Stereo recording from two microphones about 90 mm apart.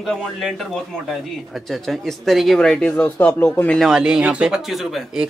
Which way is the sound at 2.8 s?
20° left (ahead or behind).